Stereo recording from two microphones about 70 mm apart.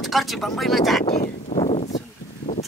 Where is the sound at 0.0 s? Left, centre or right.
Centre.